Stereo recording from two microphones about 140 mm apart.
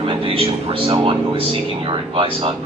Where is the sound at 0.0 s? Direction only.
40° right (ahead or behind).